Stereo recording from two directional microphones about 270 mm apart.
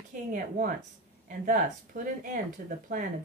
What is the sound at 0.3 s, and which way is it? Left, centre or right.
A woman's voice, right.